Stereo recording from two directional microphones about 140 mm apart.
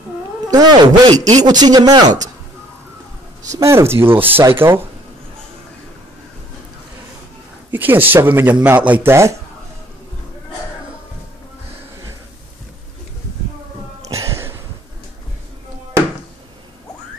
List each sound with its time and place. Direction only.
0.5 s a man's voice: 30° right (ahead or behind)
3.4 s speech: 25° right (ahead or behind)
7.7 s speech: 15° right (ahead or behind)
14.0 s a sound: 25° right (ahead or behind)